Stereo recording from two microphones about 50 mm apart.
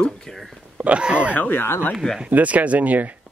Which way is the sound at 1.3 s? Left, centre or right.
Left.